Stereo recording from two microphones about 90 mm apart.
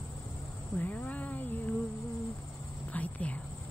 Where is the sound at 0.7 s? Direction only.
20° left (ahead or behind).